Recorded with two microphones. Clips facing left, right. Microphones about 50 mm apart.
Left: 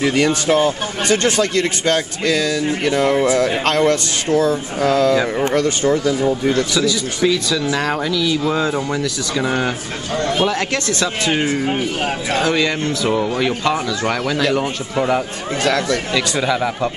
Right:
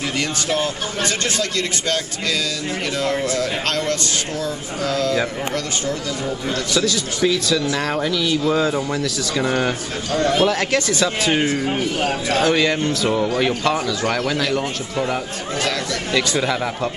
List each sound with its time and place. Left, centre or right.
0.1 s speech: left
2.8 s speech: left
6.7 s speech: centre
7.6 s speech: centre
8.0 s speech: centre
8.5 s speech: centre
10.7 s speech: centre
11.6 s speech: centre
12.4 s speech: centre
13.1 s speech: centre
16.1 s speech: centre